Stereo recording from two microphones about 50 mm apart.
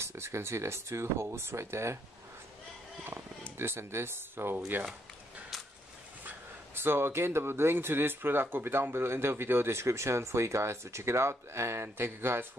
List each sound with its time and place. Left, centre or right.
0.0 s speech: right
3.5 s speech: right
6.7 s speech: right